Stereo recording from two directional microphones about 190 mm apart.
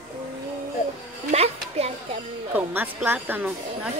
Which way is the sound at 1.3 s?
30° right (ahead or behind).